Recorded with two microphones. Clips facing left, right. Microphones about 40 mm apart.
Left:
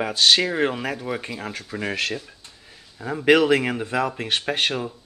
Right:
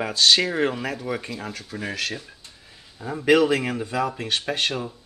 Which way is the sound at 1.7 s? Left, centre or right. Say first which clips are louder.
Left 3 dB; left.